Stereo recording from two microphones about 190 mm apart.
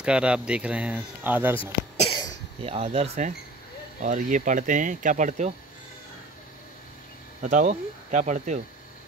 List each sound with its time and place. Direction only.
0.0 s speech: 5° right (ahead or behind)
1.6 s cough: 30° left (ahead or behind)
2.6 s speech: 35° right (ahead or behind)
7.4 s speech: 40° right (ahead or behind)